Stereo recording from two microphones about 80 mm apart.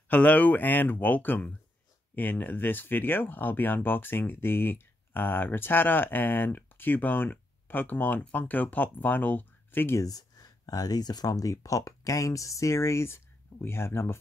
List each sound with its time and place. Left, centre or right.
0.1 s speech: centre
9.9 s speech: left